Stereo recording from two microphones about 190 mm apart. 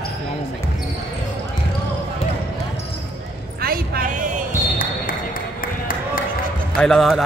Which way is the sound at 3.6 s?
50° right (ahead or behind).